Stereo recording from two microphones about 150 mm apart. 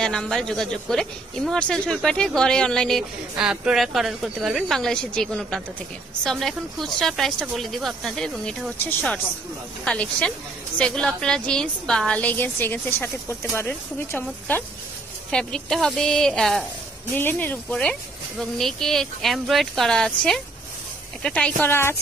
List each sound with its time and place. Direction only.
0.0 s speech: 5° left (ahead or behind)